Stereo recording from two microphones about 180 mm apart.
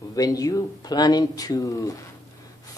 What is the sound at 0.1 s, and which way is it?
Speech, 20° left (ahead or behind).